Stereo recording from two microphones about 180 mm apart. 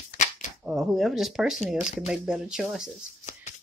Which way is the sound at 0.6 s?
5° right (ahead or behind).